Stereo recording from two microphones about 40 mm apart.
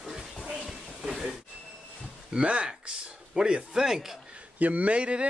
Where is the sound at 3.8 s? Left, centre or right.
Centre.